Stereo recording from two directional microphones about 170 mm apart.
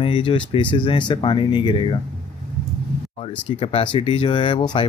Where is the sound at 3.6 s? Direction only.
30° left (ahead or behind).